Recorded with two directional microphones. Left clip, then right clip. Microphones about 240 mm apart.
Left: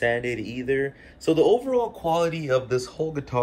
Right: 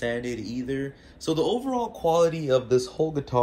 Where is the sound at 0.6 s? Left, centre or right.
Right.